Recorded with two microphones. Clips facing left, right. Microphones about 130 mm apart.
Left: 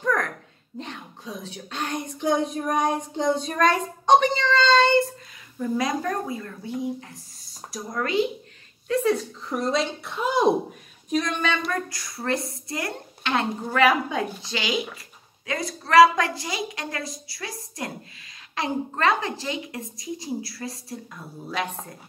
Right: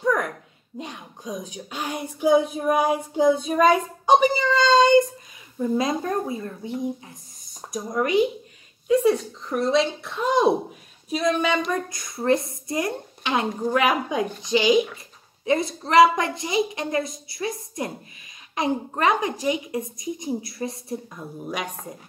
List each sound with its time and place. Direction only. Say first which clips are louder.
0.0 s a sound: right 2 dB; 10° right (ahead or behind)
0.7 s speech: right 1 dB; 10° right (ahead or behind)
5.6 s a woman's voice: right 2 dB; 25° right (ahead or behind)
9.1 s speech: even; centre (ahead or behind)
11.7 s a woman's voice: right 2 dB; 20° right (ahead or behind)